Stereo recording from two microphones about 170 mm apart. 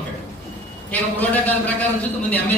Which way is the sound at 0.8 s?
10° left (ahead or behind).